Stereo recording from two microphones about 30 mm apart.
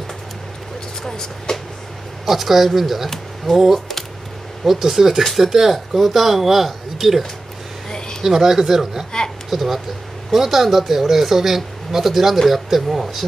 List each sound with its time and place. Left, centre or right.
1.0 s speech: centre
2.2 s speech: centre
8.2 s speech: centre
9.5 s speech: centre